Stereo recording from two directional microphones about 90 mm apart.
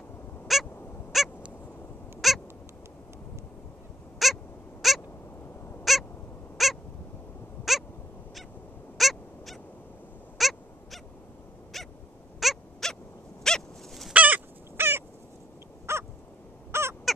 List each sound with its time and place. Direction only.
0.5 s owl: centre (ahead or behind)
2.2 s cat: centre (ahead or behind)
4.2 s owl: centre (ahead or behind)
4.8 s a sound: centre (ahead or behind)
5.9 s owl: centre (ahead or behind)
7.7 s a sound: centre (ahead or behind)
8.9 s fowl: centre (ahead or behind)
10.3 s a sound: centre (ahead or behind)
11.7 s owl: centre (ahead or behind)
12.4 s dog: centre (ahead or behind)
14.1 s dog: 20° right (ahead or behind)
15.9 s crow: 30° right (ahead or behind)